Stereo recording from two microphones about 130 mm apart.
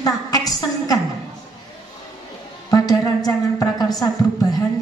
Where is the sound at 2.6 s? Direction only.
30° left (ahead or behind).